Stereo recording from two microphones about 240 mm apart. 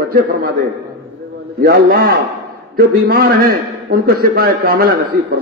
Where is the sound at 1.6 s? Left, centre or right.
Right.